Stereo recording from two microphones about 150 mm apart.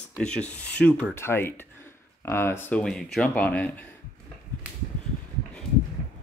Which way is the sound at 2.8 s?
5° left (ahead or behind).